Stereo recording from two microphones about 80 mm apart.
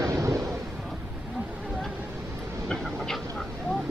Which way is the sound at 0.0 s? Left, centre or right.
Right.